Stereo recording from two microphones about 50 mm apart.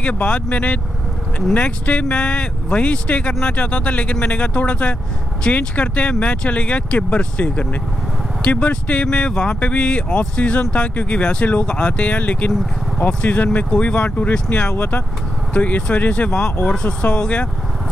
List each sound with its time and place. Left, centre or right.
0.0 s speech: left